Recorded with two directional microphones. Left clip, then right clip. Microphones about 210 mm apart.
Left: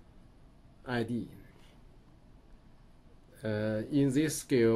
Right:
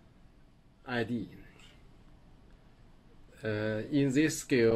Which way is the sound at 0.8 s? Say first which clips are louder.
Right 1 dB; 30° left (ahead or behind).